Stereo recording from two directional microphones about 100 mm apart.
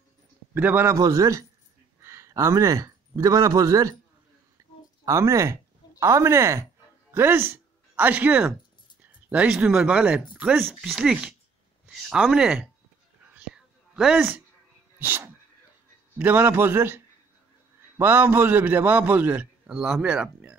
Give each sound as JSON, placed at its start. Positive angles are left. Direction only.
{"t": 0.6, "sound": "a man's voice", "side_deg": -20}
{"t": 0.9, "sound": "a man's voice", "side_deg": -35}
{"t": 4.6, "sound": "a sound", "side_deg": -35}
{"t": 5.0, "sound": "speech", "side_deg": -30}
{"t": 14.1, "sound": "a man's voice", "side_deg": -15}
{"t": 19.7, "sound": "speech", "side_deg": -5}